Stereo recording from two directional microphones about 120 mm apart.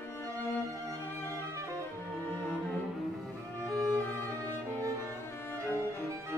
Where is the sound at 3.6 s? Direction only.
15° left (ahead or behind).